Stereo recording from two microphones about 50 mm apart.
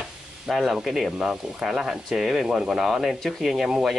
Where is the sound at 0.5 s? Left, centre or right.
Centre.